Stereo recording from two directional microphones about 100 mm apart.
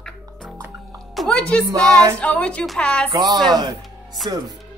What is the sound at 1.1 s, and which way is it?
Music, centre (ahead or behind).